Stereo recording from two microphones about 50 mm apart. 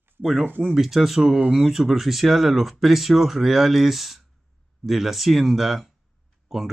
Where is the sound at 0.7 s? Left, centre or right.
Centre.